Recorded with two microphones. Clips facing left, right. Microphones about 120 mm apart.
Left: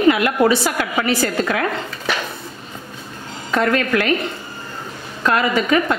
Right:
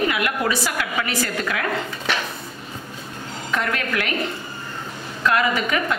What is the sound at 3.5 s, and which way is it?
Speech, 35° left (ahead or behind).